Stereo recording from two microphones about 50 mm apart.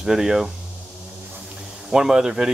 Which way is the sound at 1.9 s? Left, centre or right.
Centre.